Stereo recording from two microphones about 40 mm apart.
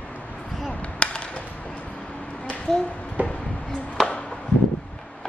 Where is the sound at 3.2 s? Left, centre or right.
Right.